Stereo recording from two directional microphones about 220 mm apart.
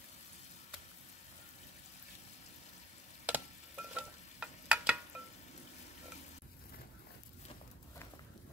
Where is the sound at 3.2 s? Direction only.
5° right (ahead or behind).